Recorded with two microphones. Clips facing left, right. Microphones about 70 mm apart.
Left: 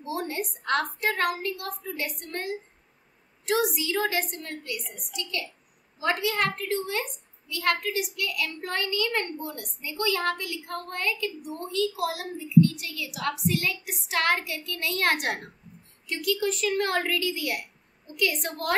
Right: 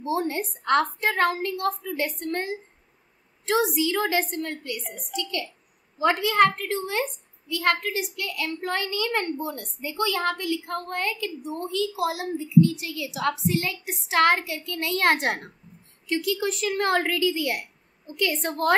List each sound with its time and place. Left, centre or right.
0.0 s a woman's voice: right
6.2 s a woman's voice: right